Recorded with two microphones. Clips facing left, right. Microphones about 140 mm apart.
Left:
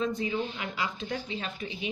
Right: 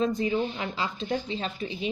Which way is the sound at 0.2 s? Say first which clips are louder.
Right 4 dB; 35° right (ahead or behind).